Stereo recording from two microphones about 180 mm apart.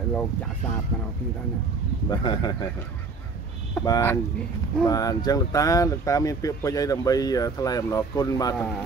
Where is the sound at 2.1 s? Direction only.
25° left (ahead or behind).